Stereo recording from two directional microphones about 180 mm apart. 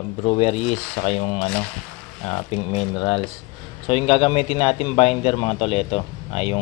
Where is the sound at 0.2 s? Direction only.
35° left (ahead or behind).